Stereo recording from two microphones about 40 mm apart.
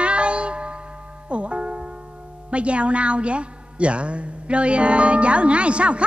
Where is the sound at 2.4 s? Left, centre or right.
Right.